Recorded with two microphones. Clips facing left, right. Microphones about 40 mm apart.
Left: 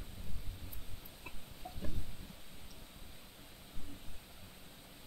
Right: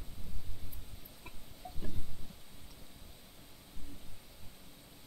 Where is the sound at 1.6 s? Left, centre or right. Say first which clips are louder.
Even; left.